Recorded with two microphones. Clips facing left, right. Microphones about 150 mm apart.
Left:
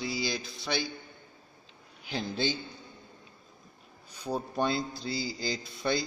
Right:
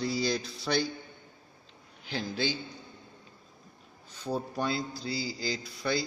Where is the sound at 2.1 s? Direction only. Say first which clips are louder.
Left 1 dB; 20° left (ahead or behind).